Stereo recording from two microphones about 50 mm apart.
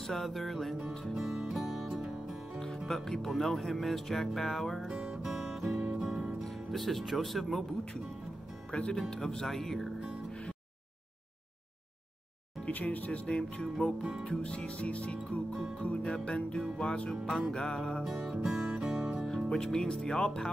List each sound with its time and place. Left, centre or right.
0.0 s speech: centre
1.1 s music: centre
2.9 s speech: centre
4.8 s music: centre
5.2 s music: centre
6.4 s speech: centre
8.7 s music: left; by 9.8 s centre
12.6 s music: left
13.6 s music: centre
14.3 s music: left
18.0 s music: centre
19.5 s music: centre